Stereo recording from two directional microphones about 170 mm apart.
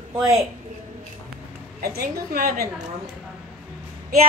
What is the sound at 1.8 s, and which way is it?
Speech, 65° right (ahead or behind).